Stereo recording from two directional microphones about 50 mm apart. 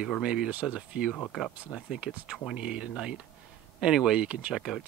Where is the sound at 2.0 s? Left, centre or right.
Right.